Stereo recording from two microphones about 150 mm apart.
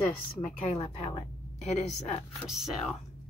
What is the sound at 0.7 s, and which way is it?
A woman's voice, 45° left (ahead or behind).